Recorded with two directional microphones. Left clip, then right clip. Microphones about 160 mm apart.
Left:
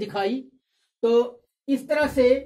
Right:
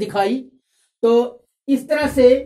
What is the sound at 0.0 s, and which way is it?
A woman's voice, 25° right (ahead or behind).